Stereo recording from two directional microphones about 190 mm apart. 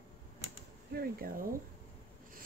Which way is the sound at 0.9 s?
50° right (ahead or behind).